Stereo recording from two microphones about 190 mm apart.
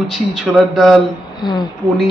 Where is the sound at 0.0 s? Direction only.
Centre (ahead or behind).